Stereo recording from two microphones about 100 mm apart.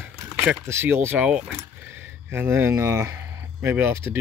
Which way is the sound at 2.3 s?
20° right (ahead or behind).